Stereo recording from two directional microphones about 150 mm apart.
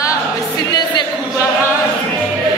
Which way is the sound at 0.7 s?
30° left (ahead or behind).